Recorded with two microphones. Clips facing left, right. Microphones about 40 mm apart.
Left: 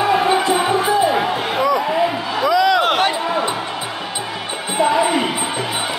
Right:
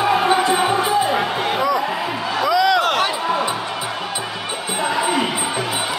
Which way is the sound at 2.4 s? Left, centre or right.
Centre.